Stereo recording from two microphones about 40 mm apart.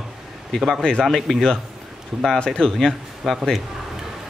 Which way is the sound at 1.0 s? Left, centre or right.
Centre.